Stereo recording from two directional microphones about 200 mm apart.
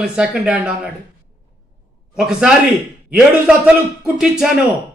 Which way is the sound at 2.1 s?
5° right (ahead or behind).